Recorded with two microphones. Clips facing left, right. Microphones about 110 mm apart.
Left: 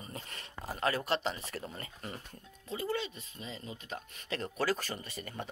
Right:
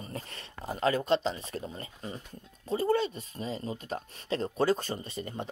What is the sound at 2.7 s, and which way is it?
Speech, 40° right (ahead or behind).